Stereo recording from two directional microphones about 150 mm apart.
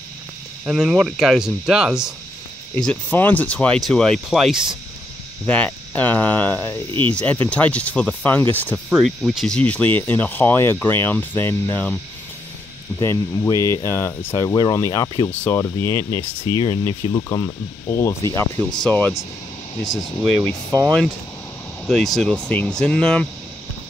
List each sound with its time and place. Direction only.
0.7 s speech: 5° right (ahead or behind)
2.7 s speech: 10° left (ahead or behind)
5.5 s speech: 10° left (ahead or behind)
8.7 s speech: 5° right (ahead or behind)
13.0 s speech: 20° left (ahead or behind)
19.8 s speech: 25° left (ahead or behind)
21.8 s speech: 5° left (ahead or behind)